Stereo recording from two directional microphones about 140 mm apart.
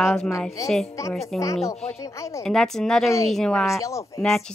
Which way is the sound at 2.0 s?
20° left (ahead or behind).